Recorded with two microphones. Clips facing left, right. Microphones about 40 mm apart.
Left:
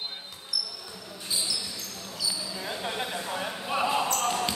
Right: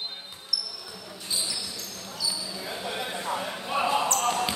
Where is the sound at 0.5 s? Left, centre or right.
Left.